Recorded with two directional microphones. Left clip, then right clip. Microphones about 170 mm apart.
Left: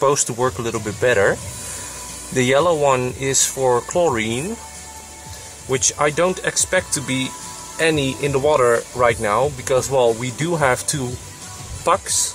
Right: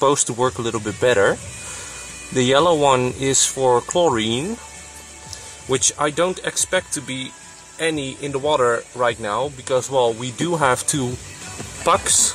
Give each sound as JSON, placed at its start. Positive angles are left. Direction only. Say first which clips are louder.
{"t": 0.0, "sound": "speech", "louder": "even", "side_deg": -30}
{"t": 5.7, "sound": "speech", "louder": "left 1 dB", "side_deg": -40}
{"t": 7.8, "sound": "speech", "louder": "left 5 dB", "side_deg": -25}
{"t": 8.5, "sound": "speech", "louder": "left 2 dB", "side_deg": -20}